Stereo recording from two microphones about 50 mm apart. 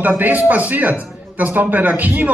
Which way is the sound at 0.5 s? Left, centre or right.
Right.